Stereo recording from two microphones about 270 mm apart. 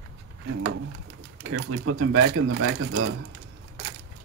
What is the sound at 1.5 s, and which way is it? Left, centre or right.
Speech, right.